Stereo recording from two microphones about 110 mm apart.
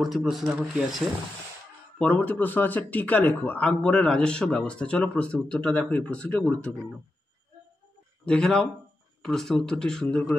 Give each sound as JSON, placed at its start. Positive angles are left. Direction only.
{"t": 0.0, "sound": "speech", "side_deg": 0}
{"t": 0.5, "sound": "speech", "side_deg": -15}
{"t": 2.0, "sound": "a man's voice", "side_deg": 15}
{"t": 8.3, "sound": "speech", "side_deg": 5}